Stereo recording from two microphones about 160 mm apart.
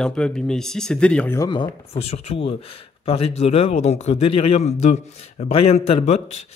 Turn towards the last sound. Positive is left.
turn(degrees=40)  # may be behind; listen again after turning